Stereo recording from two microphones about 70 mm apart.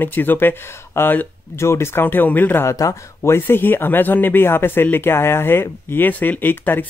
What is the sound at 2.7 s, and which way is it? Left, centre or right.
Speech, left.